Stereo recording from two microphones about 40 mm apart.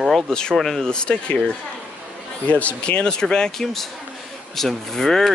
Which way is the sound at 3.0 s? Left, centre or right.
Centre.